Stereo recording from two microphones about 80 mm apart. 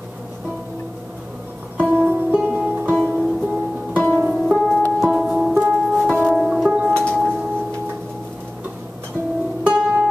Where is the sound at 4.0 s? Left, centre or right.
Right.